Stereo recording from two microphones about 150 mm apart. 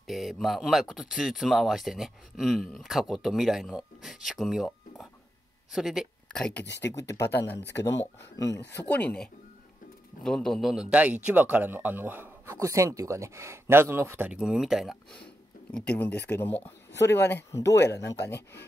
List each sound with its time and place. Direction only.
0.0 s speech: centre (ahead or behind); by 18.4 s 20° left (ahead or behind)